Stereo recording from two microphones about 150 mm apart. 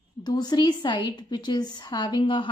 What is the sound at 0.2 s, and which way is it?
A woman's voice, 25° left (ahead or behind).